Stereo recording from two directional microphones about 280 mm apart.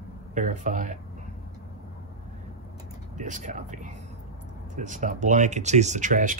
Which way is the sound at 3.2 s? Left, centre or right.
Right.